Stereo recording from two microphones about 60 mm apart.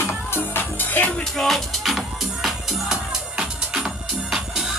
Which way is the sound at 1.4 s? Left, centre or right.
Centre.